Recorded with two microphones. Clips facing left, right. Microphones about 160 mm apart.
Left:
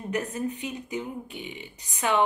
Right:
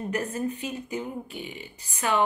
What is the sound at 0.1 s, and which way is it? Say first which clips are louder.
A woman's voice: left 2 dB; 15° left (ahead or behind).